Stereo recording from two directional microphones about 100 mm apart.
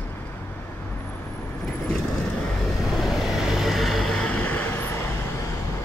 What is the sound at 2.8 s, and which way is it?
Vehicle, centre (ahead or behind).